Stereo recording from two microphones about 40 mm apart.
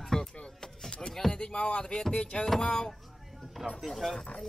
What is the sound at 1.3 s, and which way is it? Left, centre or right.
Speech, left.